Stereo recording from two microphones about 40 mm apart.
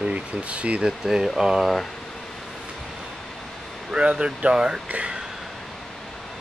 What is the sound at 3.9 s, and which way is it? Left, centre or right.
Speech, right.